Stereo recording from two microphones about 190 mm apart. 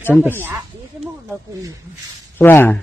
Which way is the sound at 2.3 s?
10° left (ahead or behind).